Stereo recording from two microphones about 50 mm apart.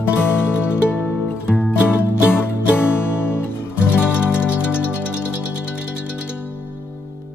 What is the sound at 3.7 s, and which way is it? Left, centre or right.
Music, right.